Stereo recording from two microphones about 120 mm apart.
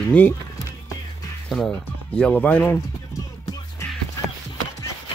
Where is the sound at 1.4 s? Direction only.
5° left (ahead or behind).